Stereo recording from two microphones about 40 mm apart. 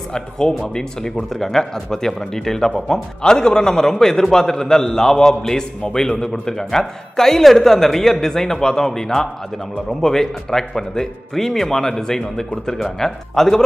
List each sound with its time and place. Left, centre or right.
0.1 s speech: centre